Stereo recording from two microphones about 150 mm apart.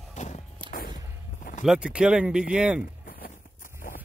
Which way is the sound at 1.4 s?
65° left (ahead or behind).